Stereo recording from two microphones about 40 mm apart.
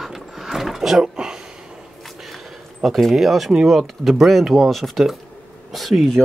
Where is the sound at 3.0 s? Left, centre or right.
Centre.